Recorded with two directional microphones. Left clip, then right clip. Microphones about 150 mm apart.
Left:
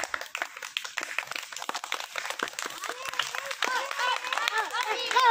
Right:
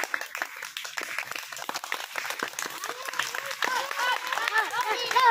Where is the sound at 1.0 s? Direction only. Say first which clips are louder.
Right 2 dB; 30° right (ahead or behind).